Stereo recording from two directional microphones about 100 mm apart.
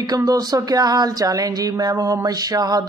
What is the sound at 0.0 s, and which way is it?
A woman's voice, 40° right (ahead or behind).